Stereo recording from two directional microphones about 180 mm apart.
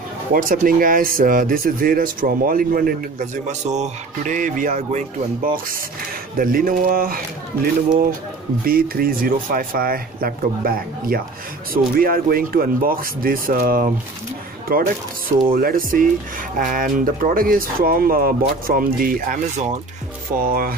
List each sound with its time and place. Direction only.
0.3 s speech: 50° right (ahead or behind)
3.4 s speech: 40° right (ahead or behind)
8.6 s speech: 55° right (ahead or behind)